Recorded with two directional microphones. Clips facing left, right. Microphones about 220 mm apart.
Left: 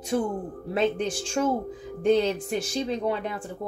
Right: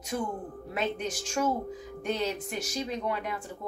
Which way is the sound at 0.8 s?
30° left (ahead or behind).